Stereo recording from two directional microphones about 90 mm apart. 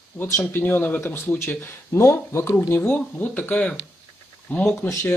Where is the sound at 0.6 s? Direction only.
20° left (ahead or behind); by 2.5 s 35° left (ahead or behind).